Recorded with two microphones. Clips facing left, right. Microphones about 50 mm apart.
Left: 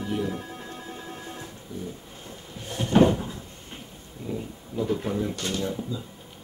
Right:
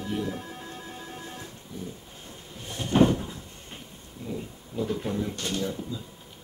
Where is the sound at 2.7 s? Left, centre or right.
Left.